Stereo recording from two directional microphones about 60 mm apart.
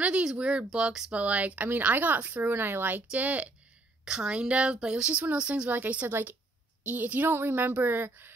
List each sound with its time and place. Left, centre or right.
0.0 s a sound: centre
0.4 s speech: centre
4.0 s a woman's voice: centre
5.7 s speech: right
6.0 s a woman's voice: right
6.8 s a woman's voice: right